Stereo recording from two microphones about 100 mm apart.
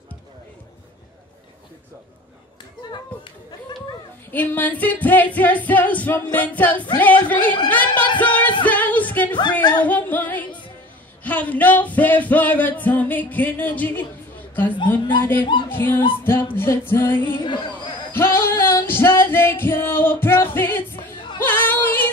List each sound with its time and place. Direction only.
4.3 s music: 15° left (ahead or behind)
14.5 s a woman's voice: 20° left (ahead or behind)
15.7 s music: 20° left (ahead or behind)
17.4 s chatter: 50° left (ahead or behind)
18.1 s music: 25° left (ahead or behind)
21.4 s yodeling: 20° left (ahead or behind)